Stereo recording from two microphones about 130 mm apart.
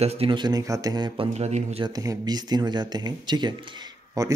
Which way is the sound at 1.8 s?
30° right (ahead or behind).